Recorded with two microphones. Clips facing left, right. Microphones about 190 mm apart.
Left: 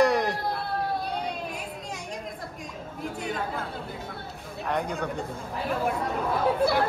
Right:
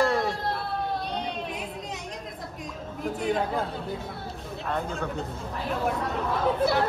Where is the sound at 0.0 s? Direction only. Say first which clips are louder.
Left 2 dB; 15° left (ahead or behind).